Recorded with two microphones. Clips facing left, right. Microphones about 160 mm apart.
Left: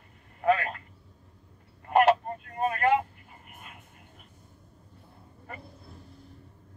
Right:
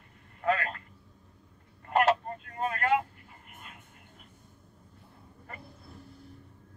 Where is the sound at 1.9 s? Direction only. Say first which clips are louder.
Left 4 dB; 15° left (ahead or behind).